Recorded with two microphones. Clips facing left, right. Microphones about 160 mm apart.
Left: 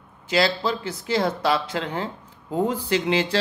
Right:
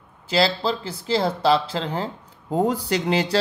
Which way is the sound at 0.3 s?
30° right (ahead or behind).